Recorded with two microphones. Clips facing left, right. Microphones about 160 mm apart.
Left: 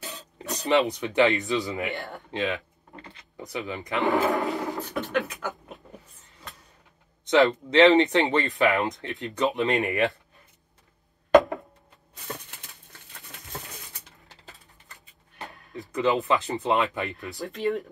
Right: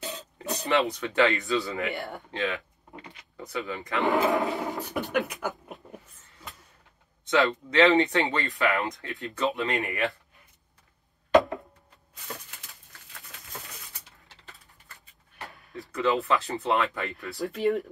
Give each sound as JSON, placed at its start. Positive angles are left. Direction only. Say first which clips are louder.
{"t": 0.7, "sound": "speech", "louder": "left 3 dB", "side_deg": 20}
{"t": 2.0, "sound": "speech", "louder": "right 1 dB", "side_deg": 0}
{"t": 2.3, "sound": "speech", "louder": "left 3 dB", "side_deg": 20}
{"t": 4.0, "sound": "speech", "louder": "even", "side_deg": 0}
{"t": 4.4, "sound": "speech", "louder": "even", "side_deg": -20}
{"t": 7.2, "sound": "speech", "louder": "left 4 dB", "side_deg": 20}
{"t": 15.3, "sound": "speech", "louder": "left 2 dB", "side_deg": 20}
{"t": 17.4, "sound": "speech", "louder": "right 2 dB", "side_deg": -5}